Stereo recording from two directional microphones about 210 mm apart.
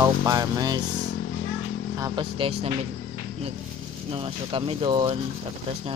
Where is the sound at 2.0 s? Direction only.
20° right (ahead or behind).